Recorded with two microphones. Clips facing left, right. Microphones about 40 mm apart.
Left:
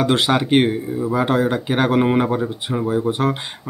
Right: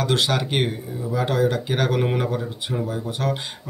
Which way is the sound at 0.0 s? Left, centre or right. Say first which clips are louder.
Left 5 dB; left.